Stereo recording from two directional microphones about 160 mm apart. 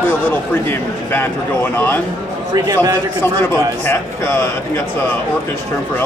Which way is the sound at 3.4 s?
15° left (ahead or behind).